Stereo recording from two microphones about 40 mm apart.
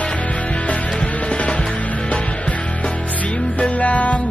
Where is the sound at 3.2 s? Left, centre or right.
Left.